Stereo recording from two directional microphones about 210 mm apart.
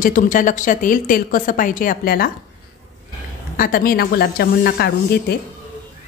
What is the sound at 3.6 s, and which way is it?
A woman's voice, 45° left (ahead or behind).